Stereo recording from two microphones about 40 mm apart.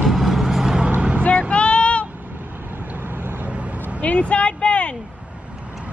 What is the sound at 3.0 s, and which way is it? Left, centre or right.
Vehicle, right.